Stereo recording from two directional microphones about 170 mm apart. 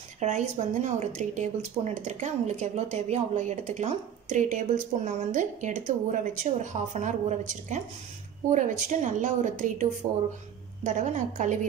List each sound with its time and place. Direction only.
0.2 s speech: 45° right (ahead or behind)